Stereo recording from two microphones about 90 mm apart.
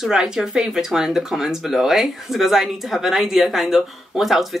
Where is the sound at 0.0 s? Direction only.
5° right (ahead or behind).